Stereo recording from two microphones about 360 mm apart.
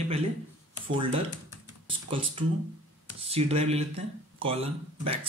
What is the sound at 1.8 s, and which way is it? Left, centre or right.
Speech, centre.